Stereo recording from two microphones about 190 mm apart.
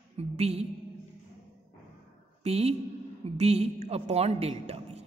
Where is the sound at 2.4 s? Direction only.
35° right (ahead or behind).